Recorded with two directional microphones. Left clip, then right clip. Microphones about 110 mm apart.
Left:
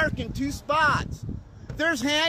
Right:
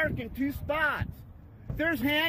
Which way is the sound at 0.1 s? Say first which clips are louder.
Left 2 dB; 40° left (ahead or behind).